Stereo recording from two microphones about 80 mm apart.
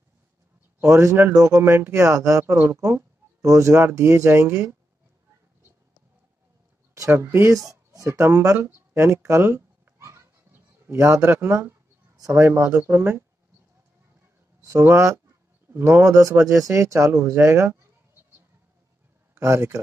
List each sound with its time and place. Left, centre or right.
0.7 s speech: right
1.3 s speech: right
1.6 s speech: right
2.4 s speech: right
6.9 s speech: right
7.5 s speech: right
14.6 s speech: right
15.7 s speech: right
19.3 s speech: right